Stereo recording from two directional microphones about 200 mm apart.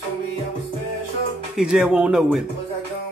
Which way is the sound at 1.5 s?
5° right (ahead or behind).